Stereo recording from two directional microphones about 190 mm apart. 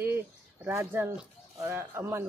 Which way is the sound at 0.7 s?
15° right (ahead or behind).